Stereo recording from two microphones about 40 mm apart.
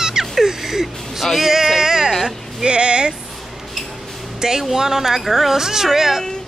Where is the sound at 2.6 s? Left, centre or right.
Right.